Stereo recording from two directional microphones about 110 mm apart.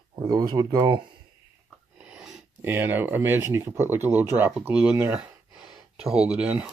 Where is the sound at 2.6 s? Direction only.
20° right (ahead or behind).